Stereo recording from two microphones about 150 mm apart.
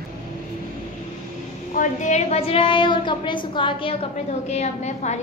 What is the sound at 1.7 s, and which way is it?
A woman's voice, 55° left (ahead or behind).